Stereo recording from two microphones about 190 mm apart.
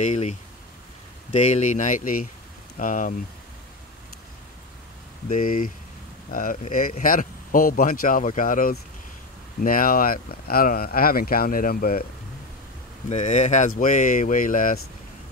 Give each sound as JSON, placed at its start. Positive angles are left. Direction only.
{"t": 0.0, "sound": "speech", "side_deg": 35}
{"t": 5.3, "sound": "speech", "side_deg": 45}
{"t": 13.1, "sound": "speech", "side_deg": 35}